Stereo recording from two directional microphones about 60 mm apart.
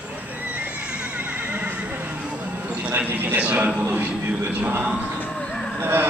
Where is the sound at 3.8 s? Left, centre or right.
Right.